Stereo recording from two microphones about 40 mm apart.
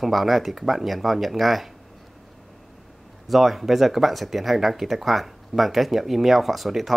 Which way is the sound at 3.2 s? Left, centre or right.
Centre.